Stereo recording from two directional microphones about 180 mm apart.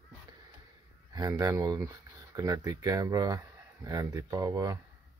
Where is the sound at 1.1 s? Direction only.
20° right (ahead or behind).